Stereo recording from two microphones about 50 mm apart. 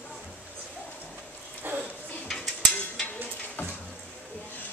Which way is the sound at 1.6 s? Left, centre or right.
Right.